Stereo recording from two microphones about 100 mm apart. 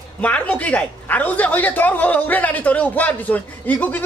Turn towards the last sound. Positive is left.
turn(degrees=15)  # may be behind; listen again after turning